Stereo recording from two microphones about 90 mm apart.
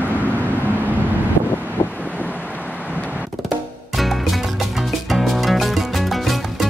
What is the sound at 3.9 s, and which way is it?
Music, centre (ahead or behind).